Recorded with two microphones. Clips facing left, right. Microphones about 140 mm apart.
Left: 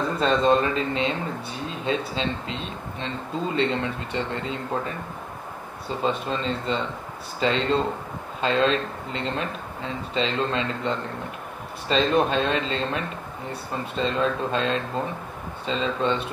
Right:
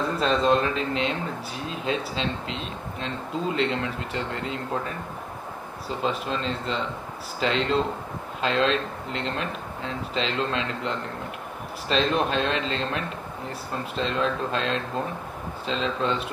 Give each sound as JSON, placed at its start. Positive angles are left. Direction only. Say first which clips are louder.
{"t": 0.2, "sound": "speech", "louder": "left 2 dB", "side_deg": 0}